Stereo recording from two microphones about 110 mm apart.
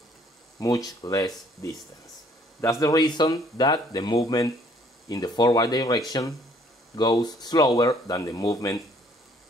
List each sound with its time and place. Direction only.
0.6 s speech: 35° left (ahead or behind)